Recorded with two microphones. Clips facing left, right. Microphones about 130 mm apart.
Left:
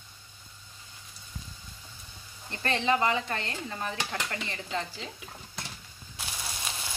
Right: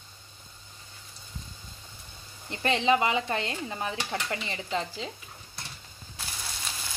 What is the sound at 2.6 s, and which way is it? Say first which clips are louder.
Speech: right 2 dB; 15° right (ahead or behind).